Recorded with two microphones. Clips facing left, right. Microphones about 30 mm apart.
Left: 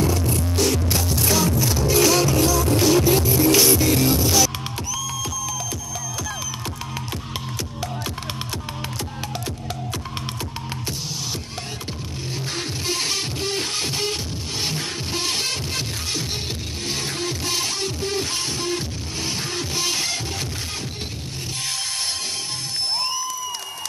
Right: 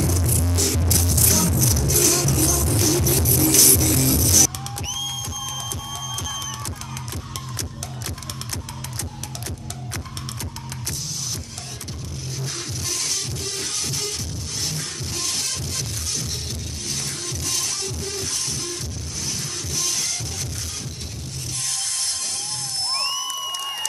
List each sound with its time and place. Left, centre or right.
0.5 s music: centre
12.4 s music: left
16.9 s music: left